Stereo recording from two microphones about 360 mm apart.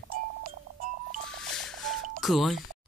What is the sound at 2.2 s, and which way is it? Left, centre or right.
Speech, centre.